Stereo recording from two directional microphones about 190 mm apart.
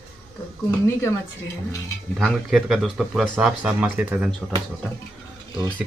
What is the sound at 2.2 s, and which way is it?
Speech, centre (ahead or behind).